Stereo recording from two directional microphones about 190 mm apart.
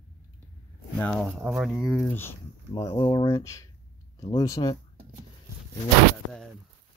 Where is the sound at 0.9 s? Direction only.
5° left (ahead or behind).